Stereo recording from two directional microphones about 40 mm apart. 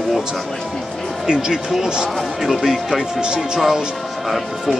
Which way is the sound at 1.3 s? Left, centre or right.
Centre.